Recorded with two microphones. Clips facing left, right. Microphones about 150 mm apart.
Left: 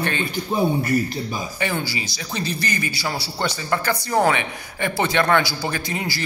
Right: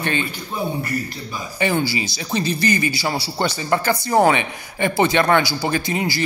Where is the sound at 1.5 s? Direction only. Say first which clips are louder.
Right 8 dB; 20° right (ahead or behind).